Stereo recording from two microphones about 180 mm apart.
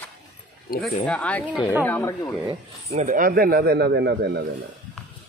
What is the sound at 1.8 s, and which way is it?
Speech, 10° left (ahead or behind).